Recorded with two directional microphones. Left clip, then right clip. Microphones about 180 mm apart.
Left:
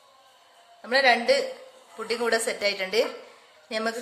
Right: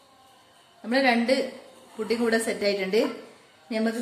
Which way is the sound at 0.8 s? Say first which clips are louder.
Left 2 dB; 35° left (ahead or behind).